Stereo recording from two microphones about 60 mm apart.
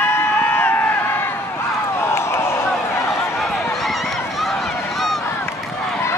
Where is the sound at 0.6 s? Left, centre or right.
Left.